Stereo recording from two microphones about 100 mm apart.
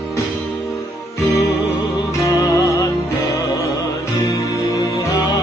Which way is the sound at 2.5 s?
30° left (ahead or behind).